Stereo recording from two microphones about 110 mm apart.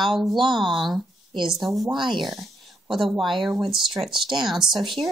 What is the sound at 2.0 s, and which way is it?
Speech, 45° right (ahead or behind).